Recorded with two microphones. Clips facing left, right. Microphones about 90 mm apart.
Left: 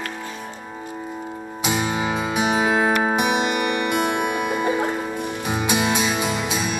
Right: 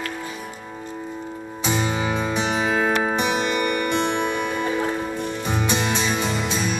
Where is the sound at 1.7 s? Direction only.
5° left (ahead or behind).